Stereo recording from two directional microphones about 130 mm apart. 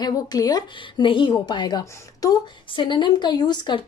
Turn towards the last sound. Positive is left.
turn(degrees=35)  # may be behind; listen again after turning